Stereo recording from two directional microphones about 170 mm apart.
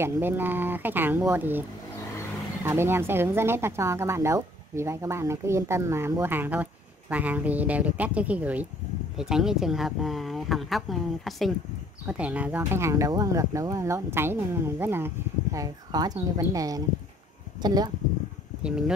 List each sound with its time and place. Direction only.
0.0 s speech: 15° right (ahead or behind)
2.6 s speech: 15° right (ahead or behind)
18.6 s speech: 5° right (ahead or behind)